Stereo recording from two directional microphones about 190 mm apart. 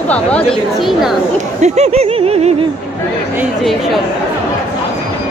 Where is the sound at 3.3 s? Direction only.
5° right (ahead or behind).